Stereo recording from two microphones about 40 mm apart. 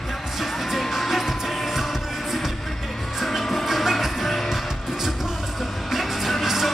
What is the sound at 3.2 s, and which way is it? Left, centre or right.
Music, centre.